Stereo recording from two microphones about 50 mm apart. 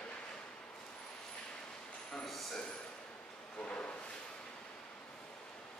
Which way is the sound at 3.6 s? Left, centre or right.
Left.